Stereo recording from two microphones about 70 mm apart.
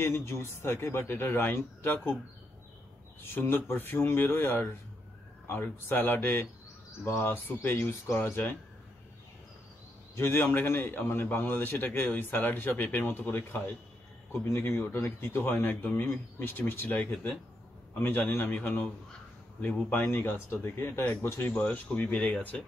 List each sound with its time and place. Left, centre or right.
0.0 s a man's voice: left
3.2 s a man's voice: left
10.1 s a man's voice: left
19.9 s a man's voice: left